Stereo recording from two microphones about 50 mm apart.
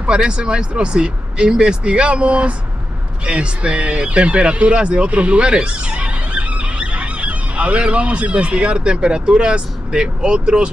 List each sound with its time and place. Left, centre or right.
0.0 s speech: centre